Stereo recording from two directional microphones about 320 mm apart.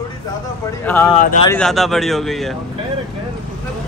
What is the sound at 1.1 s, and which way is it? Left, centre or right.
Speech, left.